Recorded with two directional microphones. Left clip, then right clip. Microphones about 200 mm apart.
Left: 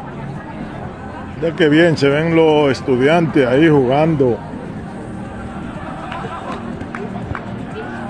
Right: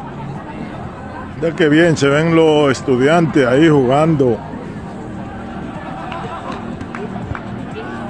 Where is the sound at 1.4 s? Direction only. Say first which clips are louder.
Even; 15° right (ahead or behind).